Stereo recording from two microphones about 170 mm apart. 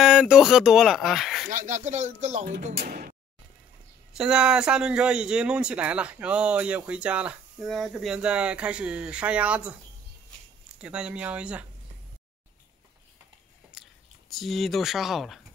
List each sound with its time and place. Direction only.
0.0 s speech: 5° right (ahead or behind)
1.5 s speech: 50° right (ahead or behind)
2.7 s speech: 70° right (ahead or behind)
4.1 s speech: 5° right (ahead or behind)
10.8 s speech: 5° right (ahead or behind)
13.8 s whispering: centre (ahead or behind)
14.3 s speech: centre (ahead or behind)